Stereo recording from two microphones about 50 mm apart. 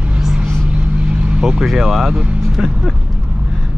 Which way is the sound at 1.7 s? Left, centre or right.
Centre.